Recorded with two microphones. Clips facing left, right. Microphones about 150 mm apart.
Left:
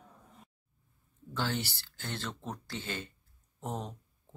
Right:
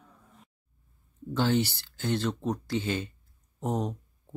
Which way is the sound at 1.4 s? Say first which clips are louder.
Right 9 dB; 20° right (ahead or behind).